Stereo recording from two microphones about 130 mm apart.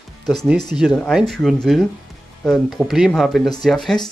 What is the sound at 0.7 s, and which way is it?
Speech, 5° right (ahead or behind).